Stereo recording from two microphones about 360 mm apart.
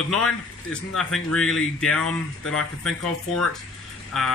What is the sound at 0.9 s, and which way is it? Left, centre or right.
Speech, centre.